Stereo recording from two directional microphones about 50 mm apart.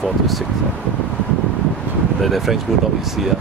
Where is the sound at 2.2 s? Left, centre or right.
Centre.